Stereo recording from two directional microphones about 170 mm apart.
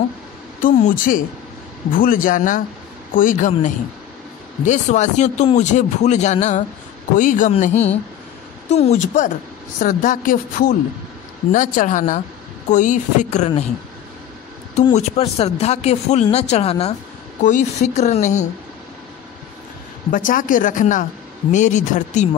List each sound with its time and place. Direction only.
0.6 s speech: 50° left (ahead or behind)
15.0 s speech: 35° left (ahead or behind)
17.4 s speech: 50° left (ahead or behind)
20.1 s speech: 50° left (ahead or behind)